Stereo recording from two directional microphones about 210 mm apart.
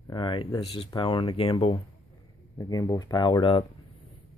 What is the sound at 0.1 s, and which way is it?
Speech, 20° left (ahead or behind).